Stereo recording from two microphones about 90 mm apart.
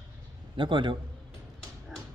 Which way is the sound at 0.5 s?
65° right (ahead or behind).